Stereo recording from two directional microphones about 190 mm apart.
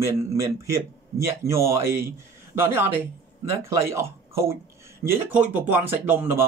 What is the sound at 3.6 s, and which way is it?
Speech, 15° right (ahead or behind).